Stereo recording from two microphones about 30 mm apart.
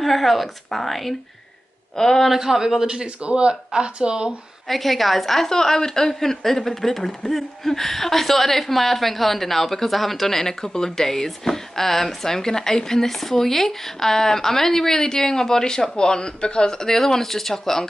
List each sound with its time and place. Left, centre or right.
0.0 s a woman's voice: centre
2.0 s speech: centre
2.3 s a man's voice: centre
3.2 s speech: right
4.6 s a woman's voice: centre
5.5 s speech: centre
16.9 s speech: centre